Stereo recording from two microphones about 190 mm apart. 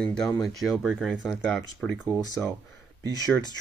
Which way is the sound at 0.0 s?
5° left (ahead or behind).